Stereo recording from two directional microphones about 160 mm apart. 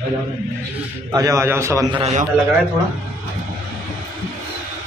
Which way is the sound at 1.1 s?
20° right (ahead or behind).